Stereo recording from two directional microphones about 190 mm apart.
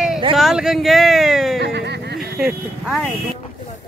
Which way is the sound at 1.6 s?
60° right (ahead or behind).